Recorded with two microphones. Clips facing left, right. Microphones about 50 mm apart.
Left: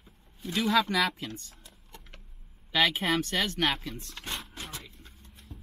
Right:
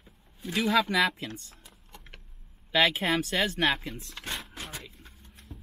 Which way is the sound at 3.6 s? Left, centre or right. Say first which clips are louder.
Right 2 dB; right.